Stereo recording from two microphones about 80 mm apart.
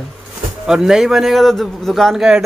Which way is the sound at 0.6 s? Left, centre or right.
Centre.